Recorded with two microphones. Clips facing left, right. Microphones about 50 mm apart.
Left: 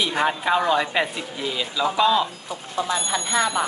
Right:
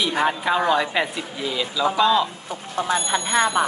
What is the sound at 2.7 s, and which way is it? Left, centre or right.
Speech, right.